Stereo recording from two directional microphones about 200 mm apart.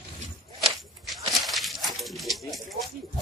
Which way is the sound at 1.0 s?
Centre (ahead or behind).